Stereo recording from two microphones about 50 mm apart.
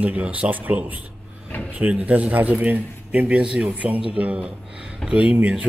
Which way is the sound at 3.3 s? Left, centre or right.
Right.